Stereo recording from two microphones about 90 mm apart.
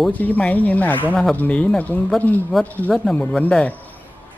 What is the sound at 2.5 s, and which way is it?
Speech, centre (ahead or behind).